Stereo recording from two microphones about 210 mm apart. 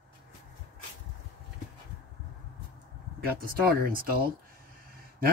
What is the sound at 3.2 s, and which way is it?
Speech, 45° right (ahead or behind).